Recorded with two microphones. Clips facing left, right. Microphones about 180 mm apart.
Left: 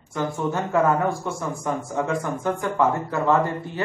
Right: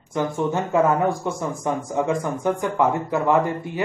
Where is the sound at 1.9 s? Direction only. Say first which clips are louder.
Right 3 dB; 15° right (ahead or behind).